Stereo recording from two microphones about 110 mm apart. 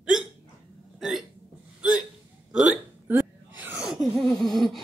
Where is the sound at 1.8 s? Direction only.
10° right (ahead or behind).